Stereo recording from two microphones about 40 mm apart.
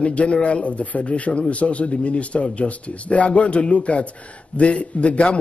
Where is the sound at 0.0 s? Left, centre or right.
Left.